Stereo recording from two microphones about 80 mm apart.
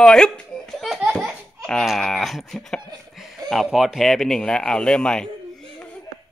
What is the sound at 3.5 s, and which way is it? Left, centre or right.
Music, centre.